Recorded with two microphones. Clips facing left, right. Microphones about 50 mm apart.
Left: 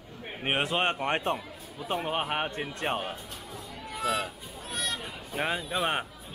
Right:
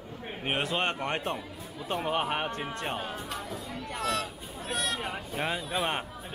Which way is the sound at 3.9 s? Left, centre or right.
Centre.